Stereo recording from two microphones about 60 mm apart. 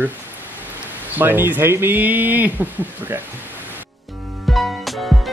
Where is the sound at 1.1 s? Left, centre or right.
Right.